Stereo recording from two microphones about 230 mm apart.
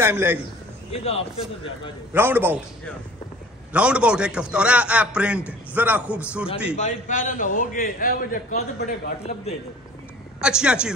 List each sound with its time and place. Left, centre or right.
0.0 s a man's voice: centre
0.9 s speech: left
2.1 s a man's voice: centre
3.7 s a man's voice: centre
6.8 s a man's voice: left
10.4 s a man's voice: centre